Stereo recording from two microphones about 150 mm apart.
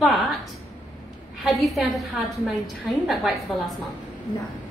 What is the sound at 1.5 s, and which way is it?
A woman's voice, centre (ahead or behind).